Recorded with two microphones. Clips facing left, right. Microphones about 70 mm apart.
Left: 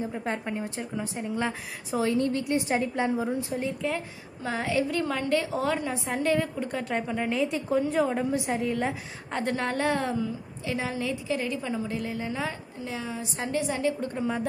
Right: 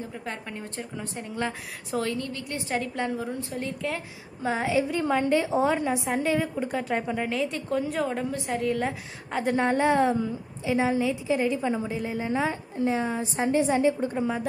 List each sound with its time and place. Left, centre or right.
0.0 s speech: left
0.7 s speech: centre
2.1 s a woman's voice: left; by 4.0 s centre
4.4 s a woman's voice: centre
6.0 s a woman's voice: centre
7.2 s speech: centre
9.4 s a woman's voice: centre
12.8 s a woman's voice: right
13.4 s a woman's voice: right